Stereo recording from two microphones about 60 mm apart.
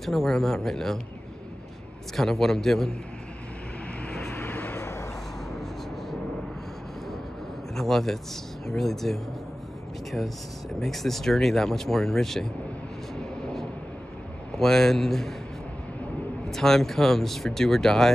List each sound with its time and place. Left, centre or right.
0.0 s speech: centre
2.1 s speech: centre
4.1 s vehicle: centre
4.4 s vehicle: left
4.7 s a sound: left
5.5 s vehicle: centre
7.7 s speech: centre
13.1 s vehicle: centre
14.5 s speech: centre
16.4 s speech: centre